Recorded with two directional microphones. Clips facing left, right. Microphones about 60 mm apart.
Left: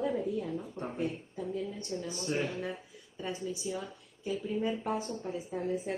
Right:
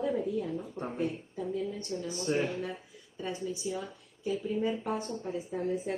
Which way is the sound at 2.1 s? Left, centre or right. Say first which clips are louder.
Right 5 dB; right.